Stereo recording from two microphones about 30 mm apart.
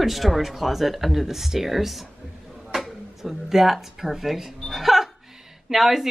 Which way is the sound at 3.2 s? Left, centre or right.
Centre.